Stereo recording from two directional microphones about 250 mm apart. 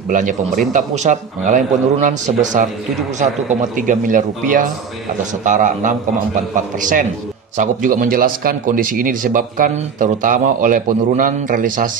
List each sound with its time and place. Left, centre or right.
0.1 s a man's voice: right